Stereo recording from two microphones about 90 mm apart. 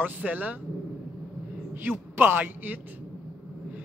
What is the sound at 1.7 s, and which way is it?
A man's voice, 20° right (ahead or behind).